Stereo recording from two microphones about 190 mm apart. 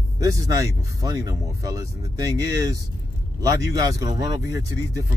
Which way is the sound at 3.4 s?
20° right (ahead or behind).